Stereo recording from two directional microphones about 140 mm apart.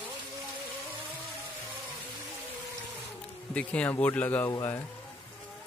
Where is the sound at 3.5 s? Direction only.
10° left (ahead or behind).